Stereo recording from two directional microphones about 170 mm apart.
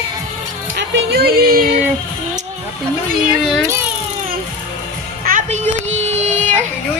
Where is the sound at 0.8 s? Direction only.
70° right (ahead or behind).